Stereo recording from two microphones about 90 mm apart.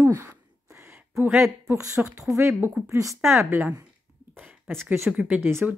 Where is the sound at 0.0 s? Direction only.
30° right (ahead or behind).